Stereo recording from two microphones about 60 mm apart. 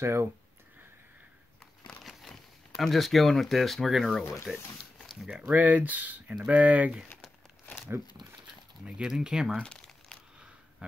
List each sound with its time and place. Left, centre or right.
0.0 s speech: right
2.8 s speech: centre
4.5 s speech: centre
4.9 s a sound: centre
5.5 s speech: right
8.8 s speech: centre
9.6 s crumpling: centre
10.8 s a sound: centre